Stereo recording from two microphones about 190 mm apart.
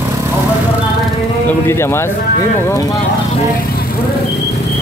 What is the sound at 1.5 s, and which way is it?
Speech, 15° left (ahead or behind).